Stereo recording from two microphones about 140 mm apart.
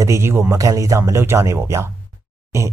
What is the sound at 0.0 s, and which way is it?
Speech, 20° right (ahead or behind).